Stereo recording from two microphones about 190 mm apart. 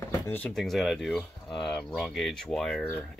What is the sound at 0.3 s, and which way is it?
Speech, 5° left (ahead or behind).